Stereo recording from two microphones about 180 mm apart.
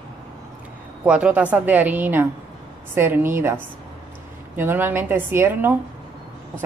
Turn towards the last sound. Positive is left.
turn(degrees=-10)  # may be behind; listen again after turning